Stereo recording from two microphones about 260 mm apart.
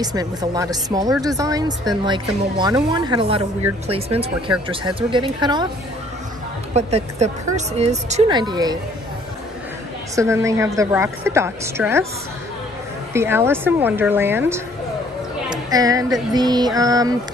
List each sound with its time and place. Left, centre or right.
0.0 s a woman's voice: centre
6.7 s speech: right
10.1 s a woman's voice: centre
13.1 s a woman's voice: centre